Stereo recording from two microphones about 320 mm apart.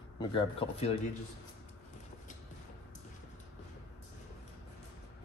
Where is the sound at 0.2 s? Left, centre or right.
Centre.